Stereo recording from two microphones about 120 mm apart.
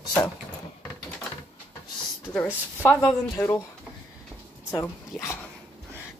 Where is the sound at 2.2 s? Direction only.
15° left (ahead or behind).